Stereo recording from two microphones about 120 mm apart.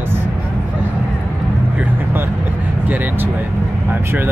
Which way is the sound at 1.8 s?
15° right (ahead or behind).